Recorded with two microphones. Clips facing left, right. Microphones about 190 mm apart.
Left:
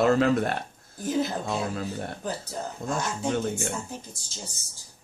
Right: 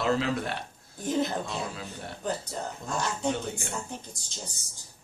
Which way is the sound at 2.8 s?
50° left (ahead or behind).